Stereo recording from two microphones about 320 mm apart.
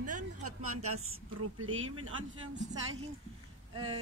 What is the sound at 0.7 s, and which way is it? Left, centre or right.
Speech, right.